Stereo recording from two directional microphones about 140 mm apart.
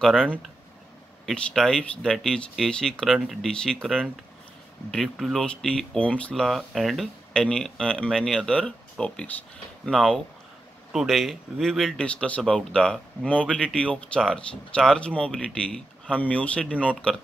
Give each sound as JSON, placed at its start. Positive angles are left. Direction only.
{"t": 0.0, "sound": "speech", "side_deg": 5}